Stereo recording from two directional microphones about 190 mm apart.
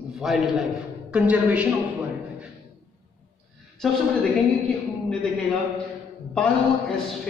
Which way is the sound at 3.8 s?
5° left (ahead or behind).